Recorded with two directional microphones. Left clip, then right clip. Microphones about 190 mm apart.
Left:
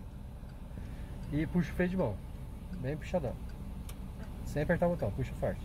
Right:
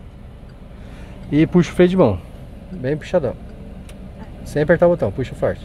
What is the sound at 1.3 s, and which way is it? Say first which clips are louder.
Speech: right 19 dB; 45° right (ahead or behind).